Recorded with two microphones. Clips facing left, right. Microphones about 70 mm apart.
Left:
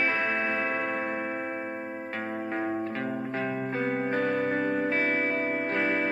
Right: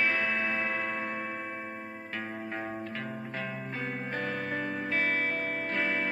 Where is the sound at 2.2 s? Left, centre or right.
Left.